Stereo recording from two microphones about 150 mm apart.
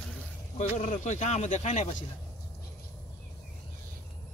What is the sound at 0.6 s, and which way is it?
Speech, 55° left (ahead or behind).